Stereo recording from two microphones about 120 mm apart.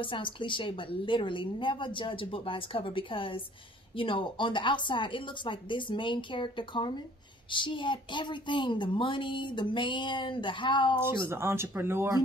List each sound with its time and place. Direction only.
0.0 s a woman's voice: 45° left (ahead or behind)
11.0 s speech: 20° right (ahead or behind)